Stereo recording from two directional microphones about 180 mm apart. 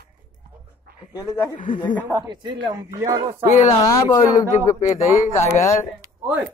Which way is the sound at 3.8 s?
20° left (ahead or behind).